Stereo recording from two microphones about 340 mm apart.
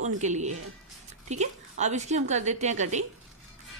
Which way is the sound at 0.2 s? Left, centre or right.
Right.